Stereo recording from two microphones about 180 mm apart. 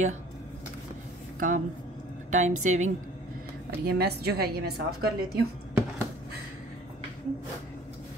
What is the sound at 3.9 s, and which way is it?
Speech, 60° right (ahead or behind).